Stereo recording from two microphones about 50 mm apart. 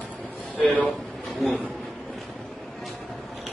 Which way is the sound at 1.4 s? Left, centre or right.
Centre.